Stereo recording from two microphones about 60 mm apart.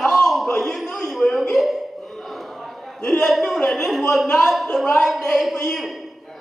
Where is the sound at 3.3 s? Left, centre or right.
Centre.